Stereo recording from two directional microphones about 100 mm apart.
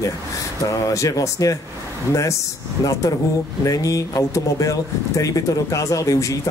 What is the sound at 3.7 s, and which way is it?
Speech, 35° left (ahead or behind).